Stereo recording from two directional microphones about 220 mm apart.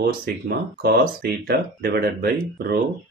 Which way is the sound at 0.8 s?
45° right (ahead or behind).